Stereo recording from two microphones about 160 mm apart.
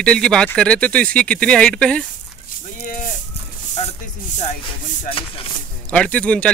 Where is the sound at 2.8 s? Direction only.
55° left (ahead or behind).